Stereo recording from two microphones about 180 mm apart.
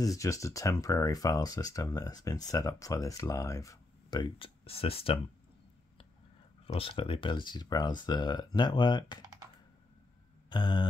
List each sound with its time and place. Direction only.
0.0 s speech: 20° left (ahead or behind)
6.7 s speech: 30° left (ahead or behind)
10.5 s speech: 25° left (ahead or behind)